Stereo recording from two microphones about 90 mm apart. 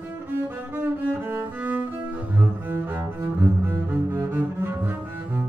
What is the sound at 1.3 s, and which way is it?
Cello, 20° right (ahead or behind).